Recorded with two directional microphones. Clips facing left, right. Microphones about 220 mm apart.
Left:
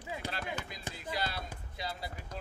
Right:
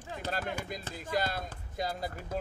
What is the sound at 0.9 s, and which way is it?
Speech, 45° right (ahead or behind).